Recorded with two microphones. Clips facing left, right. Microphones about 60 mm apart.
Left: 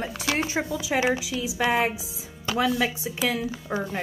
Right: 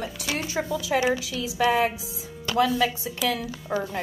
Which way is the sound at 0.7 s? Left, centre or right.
Centre.